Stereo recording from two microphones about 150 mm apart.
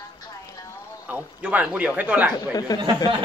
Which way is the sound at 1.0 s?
10° right (ahead or behind).